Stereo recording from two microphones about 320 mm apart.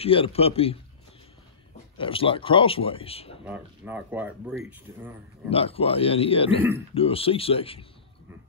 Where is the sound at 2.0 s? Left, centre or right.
Centre.